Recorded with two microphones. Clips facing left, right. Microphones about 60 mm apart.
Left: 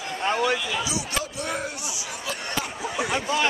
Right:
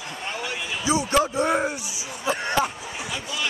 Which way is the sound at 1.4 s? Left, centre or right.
Right.